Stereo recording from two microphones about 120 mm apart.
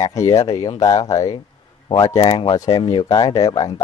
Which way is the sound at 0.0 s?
25° left (ahead or behind).